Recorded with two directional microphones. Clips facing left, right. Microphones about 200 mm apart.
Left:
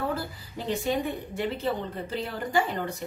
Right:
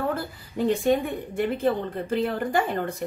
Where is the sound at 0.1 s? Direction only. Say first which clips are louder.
Right 2 dB; 55° right (ahead or behind).